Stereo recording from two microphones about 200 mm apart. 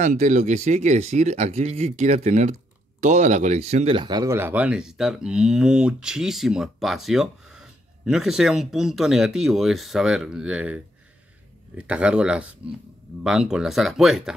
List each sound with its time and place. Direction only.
0.0 s speech: 35° right (ahead or behind); by 14.3 s centre (ahead or behind)